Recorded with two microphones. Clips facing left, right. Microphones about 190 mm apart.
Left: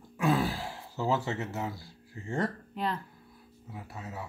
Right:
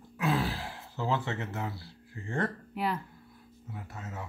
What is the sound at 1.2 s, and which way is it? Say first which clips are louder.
Speech: left 2 dB; 40° left (ahead or behind).